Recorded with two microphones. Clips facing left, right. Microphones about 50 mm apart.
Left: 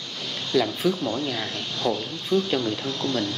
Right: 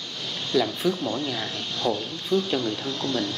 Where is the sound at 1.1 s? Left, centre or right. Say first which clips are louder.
Left 1 dB; centre.